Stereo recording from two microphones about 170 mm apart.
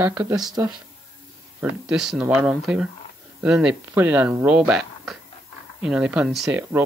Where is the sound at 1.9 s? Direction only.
5° right (ahead or behind).